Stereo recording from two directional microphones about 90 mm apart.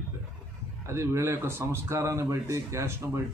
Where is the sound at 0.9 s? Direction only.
30° right (ahead or behind).